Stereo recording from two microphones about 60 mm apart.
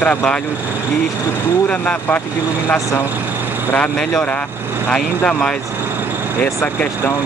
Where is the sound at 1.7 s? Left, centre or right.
Left.